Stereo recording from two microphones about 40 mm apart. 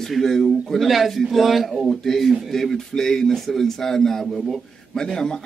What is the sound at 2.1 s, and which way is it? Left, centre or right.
A man's voice, centre.